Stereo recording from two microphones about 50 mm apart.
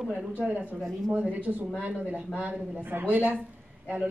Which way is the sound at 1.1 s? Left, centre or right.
Right.